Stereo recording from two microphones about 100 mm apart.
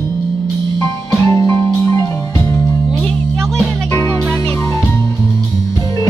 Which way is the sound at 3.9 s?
30° left (ahead or behind).